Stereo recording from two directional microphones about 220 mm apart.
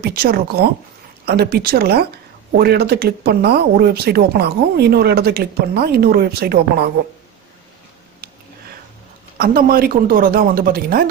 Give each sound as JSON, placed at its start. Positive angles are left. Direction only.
{"t": 0.0, "sound": "speech", "side_deg": -45}
{"t": 9.4, "sound": "speech", "side_deg": -40}